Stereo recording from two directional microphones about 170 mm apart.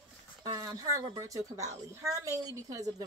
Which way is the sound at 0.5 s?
20° right (ahead or behind).